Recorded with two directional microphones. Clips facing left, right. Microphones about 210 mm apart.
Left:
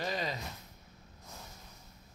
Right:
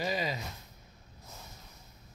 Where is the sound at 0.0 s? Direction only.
5° right (ahead or behind).